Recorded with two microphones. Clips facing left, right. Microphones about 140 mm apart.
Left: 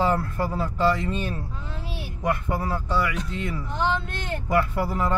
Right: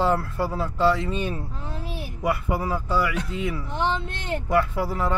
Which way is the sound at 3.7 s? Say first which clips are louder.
Left 2 dB; 25° right (ahead or behind).